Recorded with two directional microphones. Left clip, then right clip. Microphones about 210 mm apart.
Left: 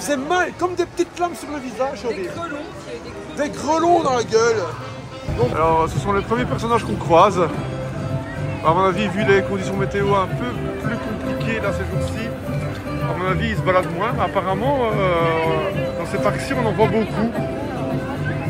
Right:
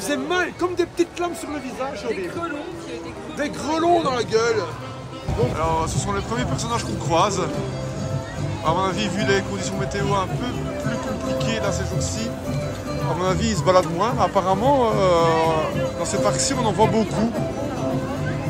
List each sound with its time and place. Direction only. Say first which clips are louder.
0.1 s speech: left 4 dB; 5° left (ahead or behind)
3.3 s speech: left 4 dB; 5° left (ahead or behind)
8.6 s speech: left 5 dB; 5° right (ahead or behind)